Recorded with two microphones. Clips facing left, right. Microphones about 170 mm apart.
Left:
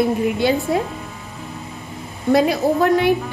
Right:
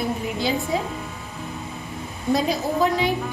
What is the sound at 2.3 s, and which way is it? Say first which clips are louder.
Speech: left 6 dB; 65° left (ahead or behind).